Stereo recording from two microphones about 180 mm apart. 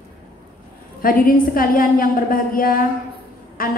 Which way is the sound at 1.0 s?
50° left (ahead or behind).